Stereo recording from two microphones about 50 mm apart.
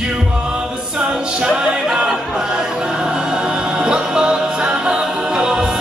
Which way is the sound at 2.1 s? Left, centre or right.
Centre.